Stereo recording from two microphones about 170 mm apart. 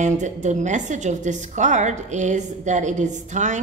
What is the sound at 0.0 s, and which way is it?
A woman's voice, 45° right (ahead or behind).